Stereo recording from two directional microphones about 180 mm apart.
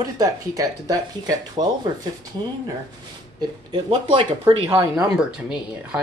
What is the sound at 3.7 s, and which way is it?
Speech, 30° right (ahead or behind).